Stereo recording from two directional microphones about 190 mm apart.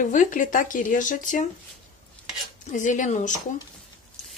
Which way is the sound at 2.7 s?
40° left (ahead or behind).